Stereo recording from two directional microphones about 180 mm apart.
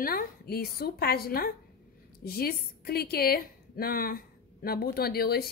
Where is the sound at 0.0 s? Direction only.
55° left (ahead or behind).